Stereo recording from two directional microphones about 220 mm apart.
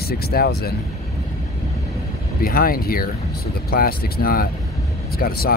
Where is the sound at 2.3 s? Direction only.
40° left (ahead or behind).